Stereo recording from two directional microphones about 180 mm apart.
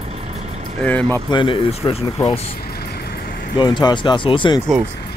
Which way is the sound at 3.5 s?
25° left (ahead or behind).